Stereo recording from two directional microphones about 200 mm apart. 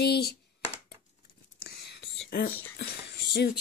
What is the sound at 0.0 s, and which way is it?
Speech, 55° left (ahead or behind).